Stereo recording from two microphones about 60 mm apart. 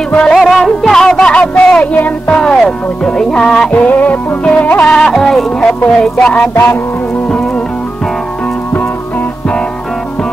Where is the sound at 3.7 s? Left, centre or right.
Left.